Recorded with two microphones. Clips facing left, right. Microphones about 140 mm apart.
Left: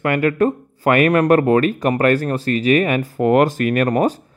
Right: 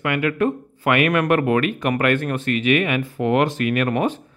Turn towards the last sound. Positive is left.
turn(degrees=40)  # may be behind; listen again after turning